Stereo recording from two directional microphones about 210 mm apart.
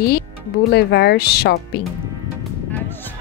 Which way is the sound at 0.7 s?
55° left (ahead or behind).